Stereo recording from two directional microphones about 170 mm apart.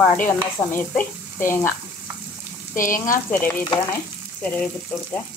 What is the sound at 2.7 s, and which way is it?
Frying, 50° left (ahead or behind).